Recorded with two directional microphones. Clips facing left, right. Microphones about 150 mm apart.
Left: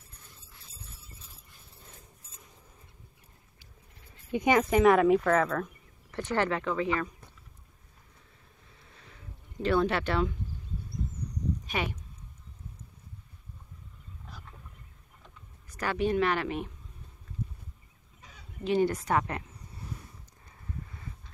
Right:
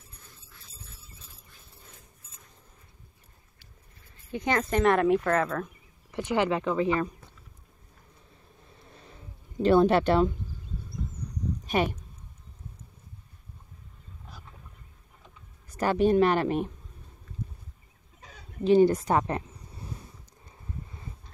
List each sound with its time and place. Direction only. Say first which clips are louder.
4.3 s speech: left 3 dB; 15° left (ahead or behind); by 7.1 s 20° right (ahead or behind)
8.8 s a sound: right 2 dB; 30° right (ahead or behind)
11.7 s speech: right 9 dB; 40° right (ahead or behind)
15.7 s speech: right 6 dB; 30° right (ahead or behind)
18.2 s a woman's voice: right 7 dB; 35° right (ahead or behind)